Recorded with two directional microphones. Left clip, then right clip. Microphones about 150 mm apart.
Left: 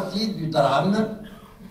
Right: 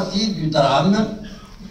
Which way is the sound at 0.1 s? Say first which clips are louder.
Right 4 dB; 15° right (ahead or behind).